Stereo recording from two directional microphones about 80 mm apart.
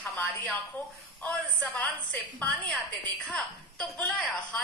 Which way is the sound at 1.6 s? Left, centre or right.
Centre.